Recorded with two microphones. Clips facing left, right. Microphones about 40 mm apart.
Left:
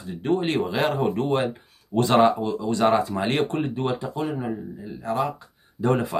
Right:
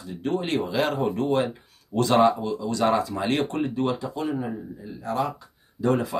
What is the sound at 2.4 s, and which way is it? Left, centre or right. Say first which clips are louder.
Speech: left 2 dB; left.